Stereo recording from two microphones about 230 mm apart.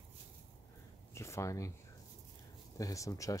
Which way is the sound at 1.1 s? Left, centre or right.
Centre.